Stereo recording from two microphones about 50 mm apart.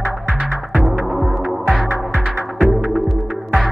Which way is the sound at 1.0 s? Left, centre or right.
Centre.